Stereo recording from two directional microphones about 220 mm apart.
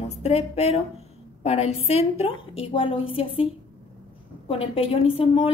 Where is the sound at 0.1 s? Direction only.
30° left (ahead or behind).